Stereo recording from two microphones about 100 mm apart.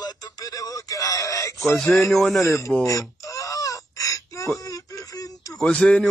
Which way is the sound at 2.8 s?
35° left (ahead or behind).